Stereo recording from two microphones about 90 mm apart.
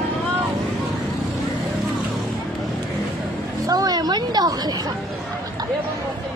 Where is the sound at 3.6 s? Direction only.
45° right (ahead or behind).